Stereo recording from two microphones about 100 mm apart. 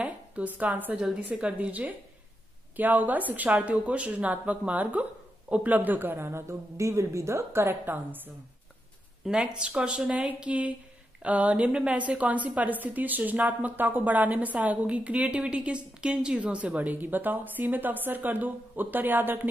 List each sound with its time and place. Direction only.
0.0 s a woman's voice: 15° right (ahead or behind)
9.2 s a woman's voice: 10° right (ahead or behind)